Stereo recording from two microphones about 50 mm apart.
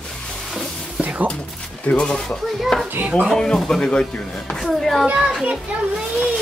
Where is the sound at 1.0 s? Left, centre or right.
Right.